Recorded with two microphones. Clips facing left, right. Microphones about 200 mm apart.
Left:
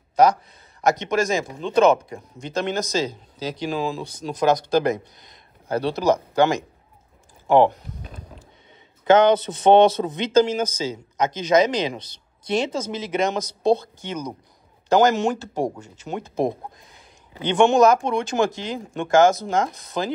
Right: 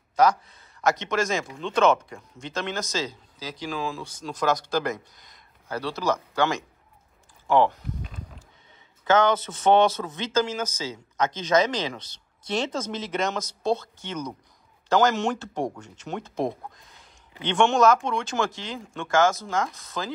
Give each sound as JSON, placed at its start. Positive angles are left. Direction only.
{"t": 0.1, "sound": "a sound", "side_deg": 20}
{"t": 0.8, "sound": "a man's voice", "side_deg": 15}
{"t": 9.0, "sound": "a man's voice", "side_deg": 20}